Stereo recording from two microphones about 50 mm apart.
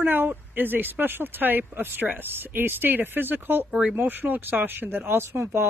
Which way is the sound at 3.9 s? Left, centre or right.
Right.